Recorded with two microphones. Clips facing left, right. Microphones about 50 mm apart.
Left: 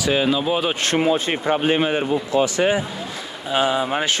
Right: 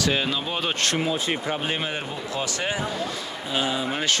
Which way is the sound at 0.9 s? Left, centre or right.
Left.